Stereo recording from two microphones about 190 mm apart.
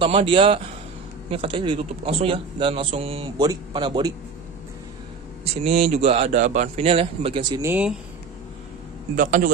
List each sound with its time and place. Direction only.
0.0 s a man's voice: 25° right (ahead or behind)
5.4 s a man's voice: 30° right (ahead or behind)
7.6 s speech: 5° right (ahead or behind)
9.1 s a man's voice: 45° right (ahead or behind)